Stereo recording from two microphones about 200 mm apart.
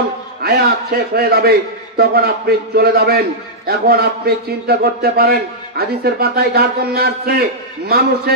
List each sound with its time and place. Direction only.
0.4 s a man's voice: 50° right (ahead or behind)